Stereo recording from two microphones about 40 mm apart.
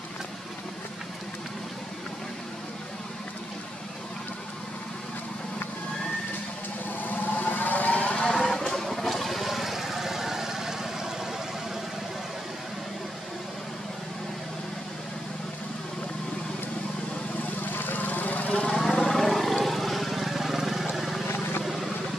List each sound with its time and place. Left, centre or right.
7.1 s vehicle: left
8.4 s a sound: centre
17.6 s lawn mower: left
18.7 s vehicle: centre